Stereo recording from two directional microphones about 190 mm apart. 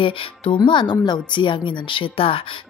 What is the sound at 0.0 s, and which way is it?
Speech, 25° left (ahead or behind).